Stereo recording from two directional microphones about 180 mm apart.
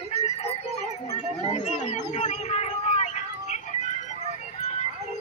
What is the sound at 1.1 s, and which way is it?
Chatter, 40° left (ahead or behind).